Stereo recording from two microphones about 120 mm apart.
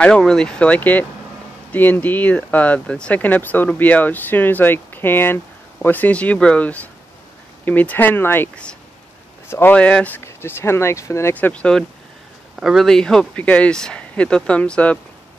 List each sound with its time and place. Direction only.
0.0 s speech: 5° left (ahead or behind)
12.5 s speech: centre (ahead or behind)